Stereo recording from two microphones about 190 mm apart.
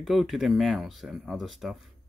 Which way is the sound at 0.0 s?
Centre (ahead or behind).